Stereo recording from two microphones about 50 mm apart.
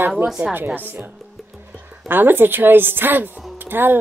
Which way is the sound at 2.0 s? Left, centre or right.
Right.